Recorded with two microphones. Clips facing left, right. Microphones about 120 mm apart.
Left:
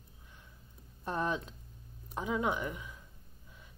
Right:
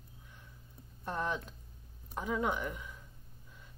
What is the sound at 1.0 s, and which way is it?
Speech, 15° left (ahead or behind).